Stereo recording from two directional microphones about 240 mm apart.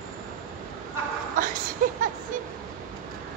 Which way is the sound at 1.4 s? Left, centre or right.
Right.